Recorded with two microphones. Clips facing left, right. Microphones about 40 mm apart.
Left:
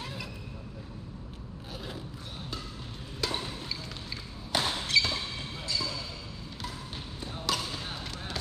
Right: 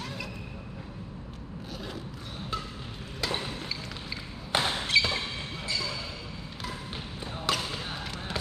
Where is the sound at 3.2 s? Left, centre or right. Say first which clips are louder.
Right 1 dB; centre.